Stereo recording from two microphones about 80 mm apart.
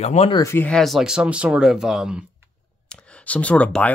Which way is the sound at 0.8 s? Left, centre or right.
Centre.